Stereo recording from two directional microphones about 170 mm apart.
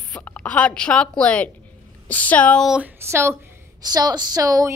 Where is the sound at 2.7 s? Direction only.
10° right (ahead or behind).